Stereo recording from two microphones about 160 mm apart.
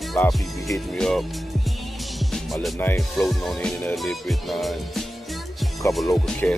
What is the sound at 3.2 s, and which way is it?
Music, centre (ahead or behind).